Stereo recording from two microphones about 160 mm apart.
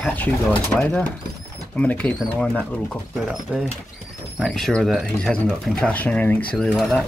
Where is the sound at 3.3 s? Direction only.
5° right (ahead or behind).